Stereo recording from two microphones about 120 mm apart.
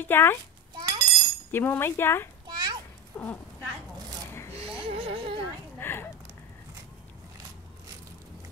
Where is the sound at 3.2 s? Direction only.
20° left (ahead or behind).